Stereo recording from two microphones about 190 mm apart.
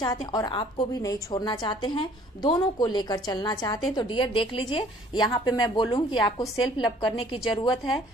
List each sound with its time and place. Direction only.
0.0 s a woman's voice: 20° left (ahead or behind)